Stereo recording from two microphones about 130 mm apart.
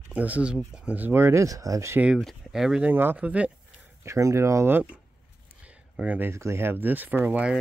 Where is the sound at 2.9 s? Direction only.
15° right (ahead or behind).